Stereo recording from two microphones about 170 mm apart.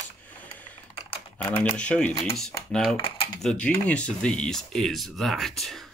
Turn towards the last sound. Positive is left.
turn(degrees=0)  # may be behind; listen again after turning